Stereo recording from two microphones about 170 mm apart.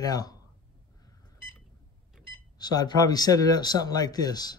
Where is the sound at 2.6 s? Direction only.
25° left (ahead or behind).